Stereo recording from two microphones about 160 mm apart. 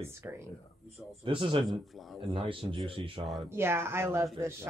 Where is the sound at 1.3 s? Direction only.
35° right (ahead or behind).